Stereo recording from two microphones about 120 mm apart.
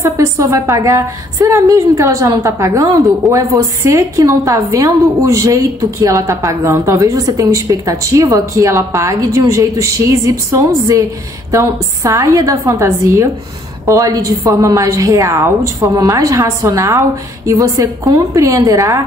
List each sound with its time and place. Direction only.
0.0 s a woman's voice: 25° right (ahead or behind)